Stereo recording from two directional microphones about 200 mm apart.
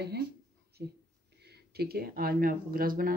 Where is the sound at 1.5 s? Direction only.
50° right (ahead or behind).